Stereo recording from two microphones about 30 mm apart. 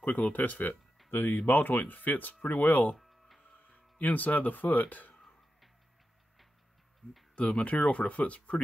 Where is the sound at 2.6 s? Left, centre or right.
Left.